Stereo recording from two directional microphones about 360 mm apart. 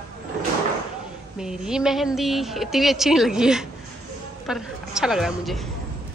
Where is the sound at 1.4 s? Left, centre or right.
Centre.